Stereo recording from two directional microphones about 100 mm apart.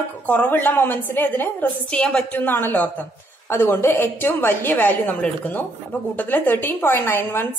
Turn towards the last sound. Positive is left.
turn(degrees=20)  # may be behind; listen again after turning